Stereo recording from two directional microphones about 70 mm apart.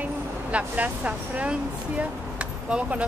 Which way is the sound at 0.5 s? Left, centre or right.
Right.